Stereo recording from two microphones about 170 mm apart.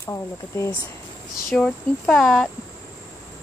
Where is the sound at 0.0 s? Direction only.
15° left (ahead or behind).